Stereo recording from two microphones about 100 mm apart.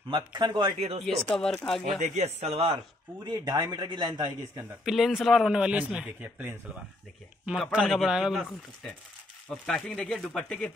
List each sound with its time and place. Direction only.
0.1 s a man's voice: 50° right (ahead or behind)
0.7 s speech: 90° right
1.0 s speech: 5° left (ahead or behind)
2.2 s speech: 90° right
3.3 s a man's voice: 40° right (ahead or behind)
4.8 s speech: 5° right (ahead or behind)
7.5 s speech: centre (ahead or behind)
9.5 s speech: 5° left (ahead or behind)